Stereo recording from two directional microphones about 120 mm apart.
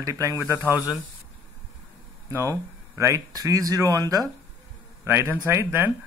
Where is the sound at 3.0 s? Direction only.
30° right (ahead or behind).